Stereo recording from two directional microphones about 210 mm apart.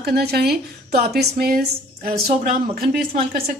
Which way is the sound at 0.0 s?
50° right (ahead or behind).